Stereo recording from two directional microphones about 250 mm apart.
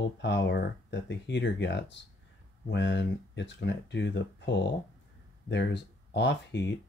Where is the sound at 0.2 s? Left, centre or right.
Left.